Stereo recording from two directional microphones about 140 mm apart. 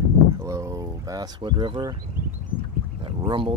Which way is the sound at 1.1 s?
35° right (ahead or behind).